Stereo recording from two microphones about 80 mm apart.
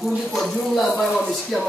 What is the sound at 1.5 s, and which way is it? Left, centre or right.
Speech, centre.